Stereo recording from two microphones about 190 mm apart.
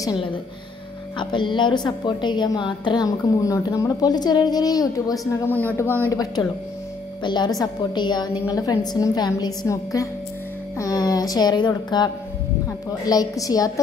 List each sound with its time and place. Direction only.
0.0 s a woman's voice: 20° left (ahead or behind)
5.2 s speech: 10° left (ahead or behind)
7.2 s a woman's voice: 20° left (ahead or behind)